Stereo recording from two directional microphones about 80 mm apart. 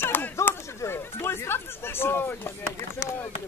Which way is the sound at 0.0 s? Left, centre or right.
Left.